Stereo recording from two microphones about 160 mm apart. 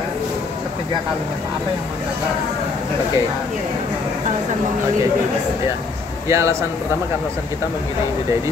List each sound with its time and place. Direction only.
6.2 s speech: 20° right (ahead or behind)